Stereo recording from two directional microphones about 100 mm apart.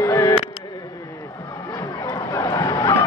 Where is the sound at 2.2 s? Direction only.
35° left (ahead or behind).